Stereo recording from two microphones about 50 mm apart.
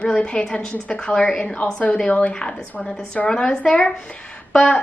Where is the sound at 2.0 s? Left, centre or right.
Left.